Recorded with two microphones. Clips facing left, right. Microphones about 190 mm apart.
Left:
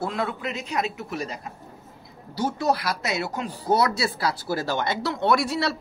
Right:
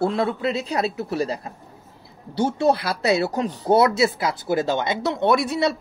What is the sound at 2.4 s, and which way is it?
Speech, 30° right (ahead or behind).